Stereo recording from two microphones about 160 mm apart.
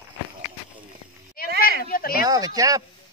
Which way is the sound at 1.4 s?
65° left (ahead or behind).